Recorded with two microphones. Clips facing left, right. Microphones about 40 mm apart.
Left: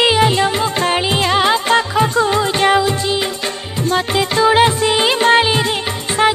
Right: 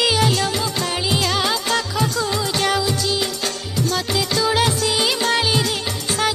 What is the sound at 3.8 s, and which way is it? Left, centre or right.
Music, left.